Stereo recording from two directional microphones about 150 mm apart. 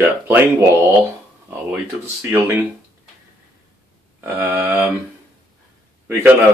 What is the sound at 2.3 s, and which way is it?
Speech, 15° right (ahead or behind).